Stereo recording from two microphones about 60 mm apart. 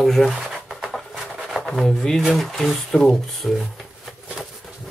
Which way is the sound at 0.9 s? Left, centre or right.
Centre.